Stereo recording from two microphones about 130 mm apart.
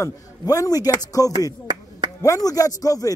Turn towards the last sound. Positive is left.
turn(degrees=25)  # may be behind; listen again after turning